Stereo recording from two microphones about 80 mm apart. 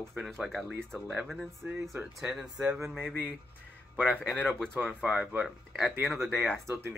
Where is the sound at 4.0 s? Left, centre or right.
Centre.